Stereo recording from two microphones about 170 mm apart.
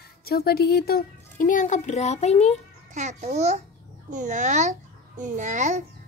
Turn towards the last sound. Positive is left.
turn(degrees=-45)  # may be behind; listen again after turning